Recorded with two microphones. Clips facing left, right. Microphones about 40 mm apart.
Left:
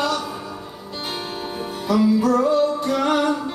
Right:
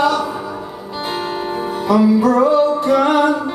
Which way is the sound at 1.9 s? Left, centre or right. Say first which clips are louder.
Right 4 dB; centre.